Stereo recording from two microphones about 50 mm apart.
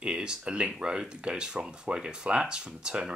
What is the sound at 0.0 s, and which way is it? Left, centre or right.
Speech, right.